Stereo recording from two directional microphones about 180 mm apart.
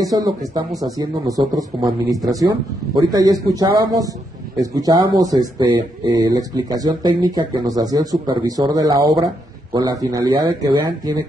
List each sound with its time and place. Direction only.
0.0 s speech: 20° right (ahead or behind)
0.7 s speech: centre (ahead or behind)
0.9 s speech: 20° right (ahead or behind)